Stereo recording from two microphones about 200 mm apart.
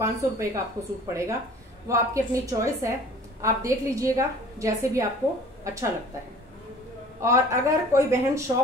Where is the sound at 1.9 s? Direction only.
15° right (ahead or behind).